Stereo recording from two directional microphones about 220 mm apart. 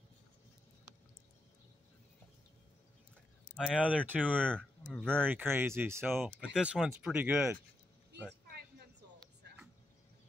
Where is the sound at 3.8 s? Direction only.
5° right (ahead or behind).